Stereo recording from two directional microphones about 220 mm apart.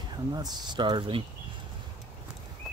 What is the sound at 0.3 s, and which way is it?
Speech, 20° right (ahead or behind).